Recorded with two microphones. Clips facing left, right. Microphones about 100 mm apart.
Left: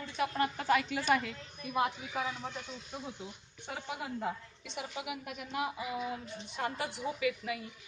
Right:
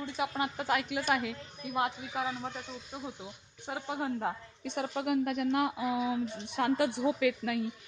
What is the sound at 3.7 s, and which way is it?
Speech, 25° right (ahead or behind).